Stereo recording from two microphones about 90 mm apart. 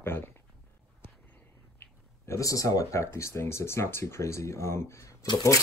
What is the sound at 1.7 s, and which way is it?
Speech, 30° left (ahead or behind).